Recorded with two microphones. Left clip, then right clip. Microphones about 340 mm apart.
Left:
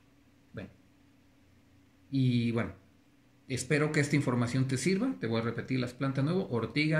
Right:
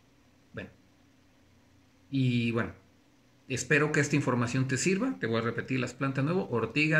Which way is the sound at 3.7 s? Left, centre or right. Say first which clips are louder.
Right 3 dB; centre.